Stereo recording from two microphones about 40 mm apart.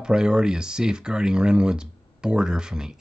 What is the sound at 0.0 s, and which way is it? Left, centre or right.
Speech, centre.